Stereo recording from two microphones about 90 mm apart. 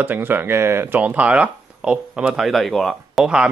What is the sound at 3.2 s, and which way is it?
Speech, 10° right (ahead or behind).